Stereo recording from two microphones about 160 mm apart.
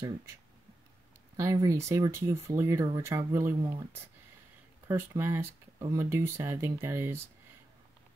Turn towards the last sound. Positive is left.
turn(degrees=-15)  # may be behind; listen again after turning